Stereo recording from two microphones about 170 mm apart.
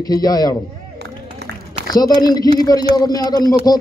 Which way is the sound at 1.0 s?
80° right.